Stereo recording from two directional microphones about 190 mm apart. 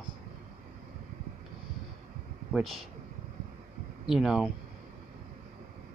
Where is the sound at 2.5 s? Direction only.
Centre (ahead or behind).